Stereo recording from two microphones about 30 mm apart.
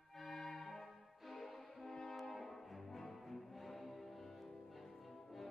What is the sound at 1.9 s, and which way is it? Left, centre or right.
French horn, centre.